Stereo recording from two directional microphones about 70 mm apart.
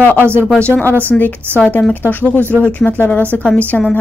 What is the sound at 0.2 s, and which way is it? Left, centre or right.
Speech, right.